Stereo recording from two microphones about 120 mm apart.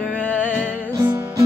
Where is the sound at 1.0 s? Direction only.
15° right (ahead or behind).